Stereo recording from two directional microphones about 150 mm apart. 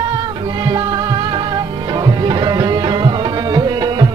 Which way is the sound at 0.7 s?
30° right (ahead or behind).